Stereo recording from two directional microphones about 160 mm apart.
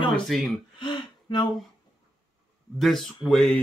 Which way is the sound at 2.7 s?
Centre (ahead or behind).